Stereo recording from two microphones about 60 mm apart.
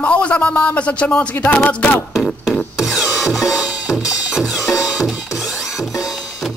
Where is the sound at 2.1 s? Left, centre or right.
Centre.